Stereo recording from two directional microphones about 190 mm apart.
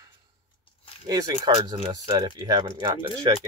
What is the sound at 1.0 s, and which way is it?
Speech, 20° right (ahead or behind).